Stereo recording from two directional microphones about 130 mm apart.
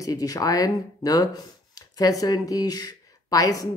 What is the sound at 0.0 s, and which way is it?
Speech, 30° left (ahead or behind).